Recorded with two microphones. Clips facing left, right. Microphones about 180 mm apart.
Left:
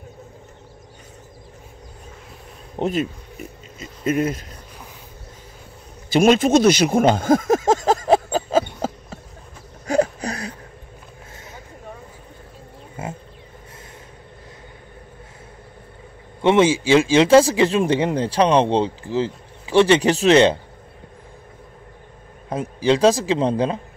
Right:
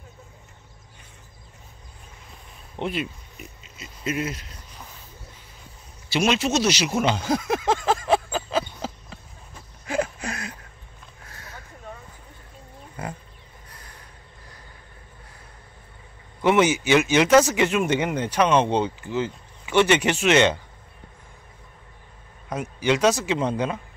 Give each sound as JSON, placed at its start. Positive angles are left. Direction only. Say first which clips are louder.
{"t": 2.7, "sound": "speech", "louder": "left 6 dB", "side_deg": 45}
{"t": 6.0, "sound": "a sound", "louder": "left 8 dB", "side_deg": 50}
{"t": 11.2, "sound": "vehicle", "louder": "left 1 dB", "side_deg": 20}
{"t": 13.0, "sound": "roaring cats", "louder": "left 3 dB", "side_deg": 25}
{"t": 16.3, "sound": "speech", "louder": "left 4 dB", "side_deg": 25}
{"t": 22.5, "sound": "speech", "louder": "left 4 dB", "side_deg": 30}